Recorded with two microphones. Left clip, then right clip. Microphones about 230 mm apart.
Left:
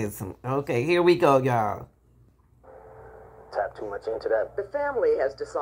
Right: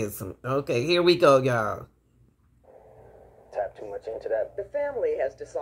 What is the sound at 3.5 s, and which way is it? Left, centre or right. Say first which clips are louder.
Speech: left 2 dB; left.